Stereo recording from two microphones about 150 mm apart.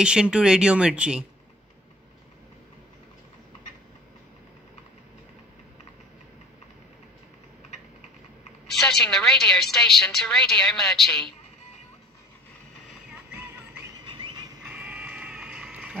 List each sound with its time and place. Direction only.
0.0 s speech: 5° right (ahead or behind)
8.7 s a woman's voice: 5° left (ahead or behind)
14.0 s a sound: 35° right (ahead or behind)
14.6 s sheep: 10° right (ahead or behind)